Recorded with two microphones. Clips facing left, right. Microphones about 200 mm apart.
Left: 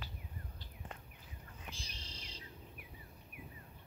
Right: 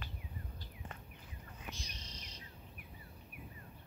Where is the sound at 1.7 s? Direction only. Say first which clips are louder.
Right 1 dB; 30° left (ahead or behind).